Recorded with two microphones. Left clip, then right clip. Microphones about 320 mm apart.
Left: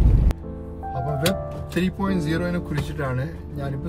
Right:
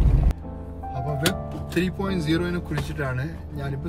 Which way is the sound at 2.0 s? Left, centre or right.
Centre.